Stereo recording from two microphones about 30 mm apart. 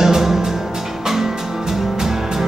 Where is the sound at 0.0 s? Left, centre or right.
Centre.